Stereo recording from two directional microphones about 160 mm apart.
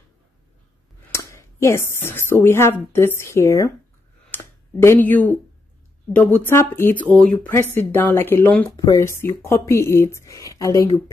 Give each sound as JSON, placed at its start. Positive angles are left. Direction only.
{"t": 1.1, "sound": "speech", "side_deg": 15}